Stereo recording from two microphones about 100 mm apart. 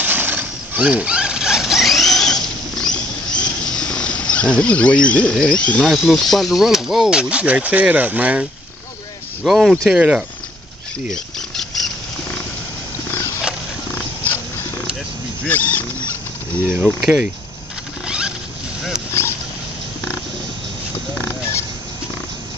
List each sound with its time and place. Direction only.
0.0 s rodents: 20° right (ahead or behind); by 5.4 s 15° left (ahead or behind)
5.4 s speech: 10° left (ahead or behind)
5.9 s speech: centre (ahead or behind)
11.1 s rodents: 5° left (ahead or behind)
14.2 s purr: 20° left (ahead or behind)
15.4 s a sound: 20° left (ahead or behind)
16.8 s speech: 5° right (ahead or behind)
18.0 s rodents: 10° right (ahead or behind)
18.9 s a sound: 30° left (ahead or behind)
21.2 s a sound: 20° left (ahead or behind)